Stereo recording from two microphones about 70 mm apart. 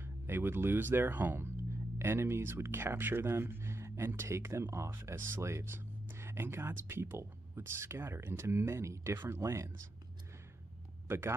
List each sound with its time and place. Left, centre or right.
0.0 s speech: right
11.1 s a man's voice: right